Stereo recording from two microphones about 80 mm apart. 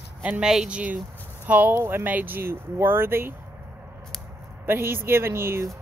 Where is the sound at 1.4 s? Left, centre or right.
Centre.